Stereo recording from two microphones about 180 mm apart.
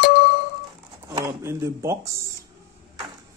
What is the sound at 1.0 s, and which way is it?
Speech, 20° right (ahead or behind).